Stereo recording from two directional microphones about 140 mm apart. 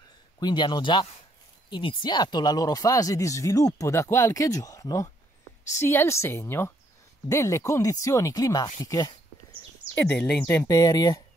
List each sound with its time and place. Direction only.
0.4 s speech: 30° left (ahead or behind)
9.9 s speech: 10° left (ahead or behind)
10.7 s speech: 25° left (ahead or behind)